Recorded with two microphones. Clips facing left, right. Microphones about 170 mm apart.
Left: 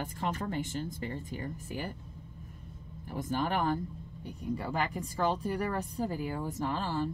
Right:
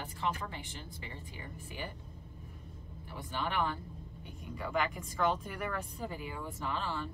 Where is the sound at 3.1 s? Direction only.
45° left (ahead or behind).